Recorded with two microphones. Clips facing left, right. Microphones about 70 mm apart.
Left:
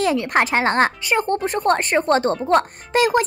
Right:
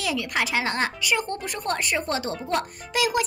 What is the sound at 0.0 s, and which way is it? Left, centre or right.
A woman's voice, left.